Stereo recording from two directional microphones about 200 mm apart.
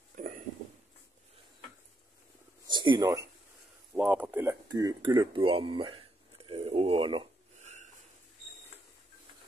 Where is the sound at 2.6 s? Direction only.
25° right (ahead or behind).